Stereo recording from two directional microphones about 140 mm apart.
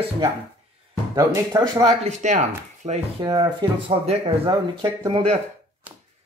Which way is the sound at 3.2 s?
35° right (ahead or behind).